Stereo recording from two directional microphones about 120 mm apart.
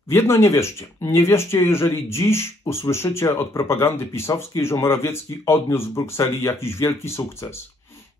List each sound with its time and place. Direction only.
0.1 s speech: 20° left (ahead or behind)